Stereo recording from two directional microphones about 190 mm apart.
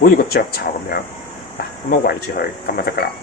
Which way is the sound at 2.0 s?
55° left (ahead or behind).